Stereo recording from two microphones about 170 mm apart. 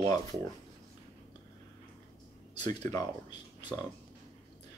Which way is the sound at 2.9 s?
20° left (ahead or behind).